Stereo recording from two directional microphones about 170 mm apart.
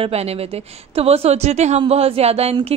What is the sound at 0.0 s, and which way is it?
A woman's voice, 35° right (ahead or behind).